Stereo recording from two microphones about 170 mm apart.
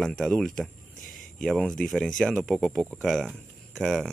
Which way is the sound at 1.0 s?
55° left (ahead or behind).